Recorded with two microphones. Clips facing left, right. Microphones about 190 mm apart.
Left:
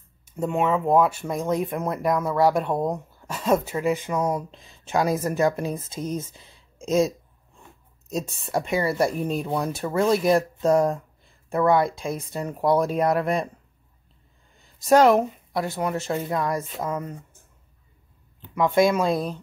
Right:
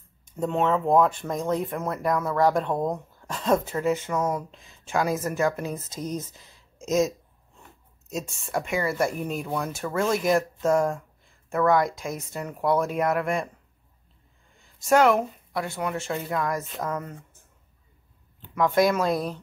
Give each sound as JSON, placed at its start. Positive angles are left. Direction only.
{"t": 0.2, "sound": "speech", "side_deg": 10}
{"t": 4.5, "sound": "speech", "side_deg": 35}
{"t": 14.6, "sound": "speech", "side_deg": 35}
{"t": 18.5, "sound": "speech", "side_deg": 25}